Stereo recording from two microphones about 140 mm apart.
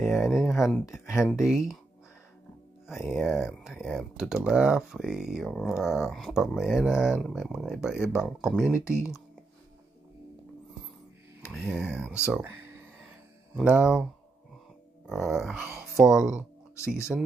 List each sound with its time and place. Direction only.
0.0 s speech: 5° right (ahead or behind)
2.9 s speech: centre (ahead or behind)
8.7 s speech: 20° left (ahead or behind)
11.5 s speech: 10° right (ahead or behind)
11.8 s speech: 15° left (ahead or behind)
13.7 s speech: 5° right (ahead or behind)
15.2 s speech: 5° right (ahead or behind)
16.7 s speech: 20° left (ahead or behind)